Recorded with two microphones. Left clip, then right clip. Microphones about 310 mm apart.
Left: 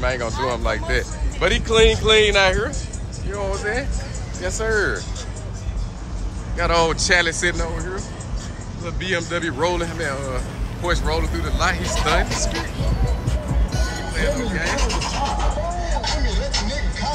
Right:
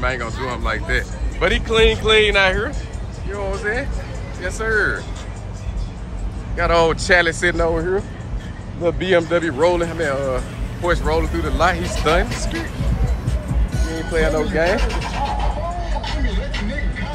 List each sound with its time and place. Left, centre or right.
0.0 s speech: centre
6.5 s speech: centre
13.7 s music: left
14.2 s speech: left
14.6 s vehicle: left; by 17.1 s centre